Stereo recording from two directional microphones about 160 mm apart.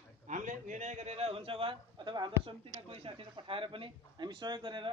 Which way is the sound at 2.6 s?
40° right (ahead or behind).